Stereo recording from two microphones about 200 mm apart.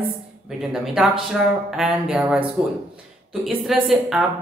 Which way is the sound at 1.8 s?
5° right (ahead or behind).